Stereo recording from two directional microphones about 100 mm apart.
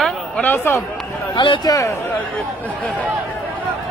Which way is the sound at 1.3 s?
50° left (ahead or behind).